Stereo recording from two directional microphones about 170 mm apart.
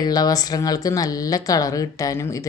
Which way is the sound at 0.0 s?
25° left (ahead or behind).